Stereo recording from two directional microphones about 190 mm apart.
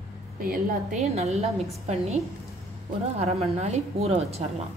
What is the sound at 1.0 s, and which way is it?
Speech, 35° right (ahead or behind).